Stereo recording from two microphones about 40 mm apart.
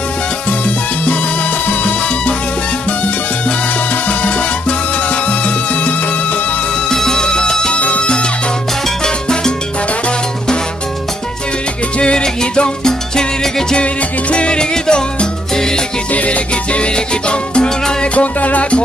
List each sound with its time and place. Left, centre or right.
1.7 s salsa music: left
6.9 s music: centre
7.8 s music: left
9.0 s music: centre
12.0 s salsa music: left
14.3 s music: left
18.1 s music: left